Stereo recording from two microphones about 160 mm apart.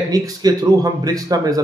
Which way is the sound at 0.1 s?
25° right (ahead or behind).